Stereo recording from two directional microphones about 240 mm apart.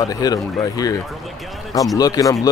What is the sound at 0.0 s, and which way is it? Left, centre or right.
Speech, centre.